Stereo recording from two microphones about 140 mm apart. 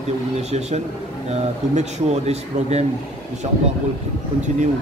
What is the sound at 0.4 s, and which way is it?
Speech, 50° right (ahead or behind).